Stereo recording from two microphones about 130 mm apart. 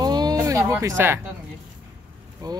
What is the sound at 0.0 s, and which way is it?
Music, 30° right (ahead or behind).